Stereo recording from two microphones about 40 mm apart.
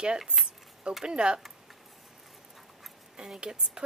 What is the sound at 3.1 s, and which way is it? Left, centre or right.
Speech, centre.